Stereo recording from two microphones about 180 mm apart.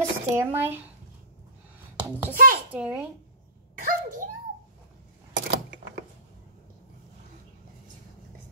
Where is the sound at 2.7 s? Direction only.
5° right (ahead or behind).